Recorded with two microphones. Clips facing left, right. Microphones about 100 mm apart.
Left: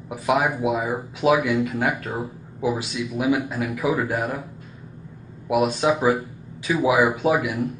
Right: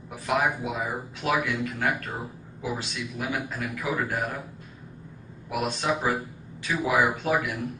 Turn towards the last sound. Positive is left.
turn(degrees=5)  # may be behind; listen again after turning